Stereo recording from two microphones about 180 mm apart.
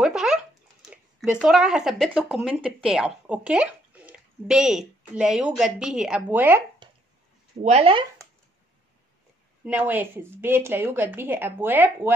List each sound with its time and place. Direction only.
0.0 s a sound: 5° right (ahead or behind)
0.8 s speech: 5° right (ahead or behind)
6.8 s dog: 25° right (ahead or behind)
7.6 s speech: 35° right (ahead or behind)
9.7 s a woman's voice: 10° right (ahead or behind)